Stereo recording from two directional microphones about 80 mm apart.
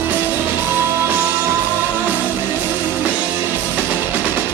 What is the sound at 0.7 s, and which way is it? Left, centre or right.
Music, right.